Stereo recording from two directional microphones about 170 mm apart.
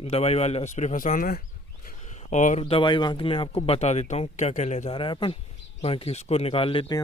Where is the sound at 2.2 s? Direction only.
45° left (ahead or behind).